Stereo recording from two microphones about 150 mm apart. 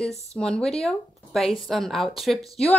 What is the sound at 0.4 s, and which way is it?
A woman's voice, 5° left (ahead or behind).